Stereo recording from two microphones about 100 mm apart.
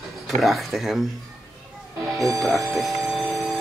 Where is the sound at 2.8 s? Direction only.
Centre (ahead or behind).